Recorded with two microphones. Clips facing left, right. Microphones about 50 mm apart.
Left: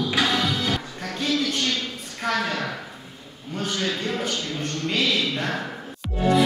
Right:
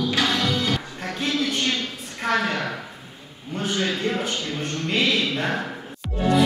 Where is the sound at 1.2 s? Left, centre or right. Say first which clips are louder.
Even; right.